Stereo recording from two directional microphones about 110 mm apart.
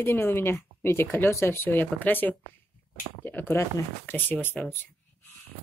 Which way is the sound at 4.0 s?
15° left (ahead or behind).